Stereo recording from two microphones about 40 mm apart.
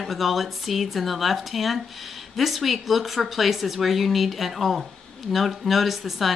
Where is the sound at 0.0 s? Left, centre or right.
Centre.